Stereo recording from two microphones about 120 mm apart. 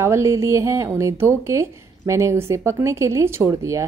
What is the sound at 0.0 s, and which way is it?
A woman's voice, 25° right (ahead or behind).